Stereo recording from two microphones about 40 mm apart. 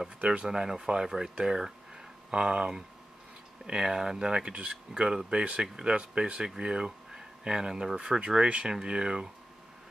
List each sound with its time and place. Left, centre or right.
0.2 s speech: right
0.5 s speech: centre